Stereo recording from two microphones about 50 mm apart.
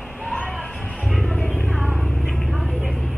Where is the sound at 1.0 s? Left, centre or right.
Centre.